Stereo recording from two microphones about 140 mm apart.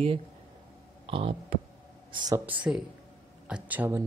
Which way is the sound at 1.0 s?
40° right (ahead or behind).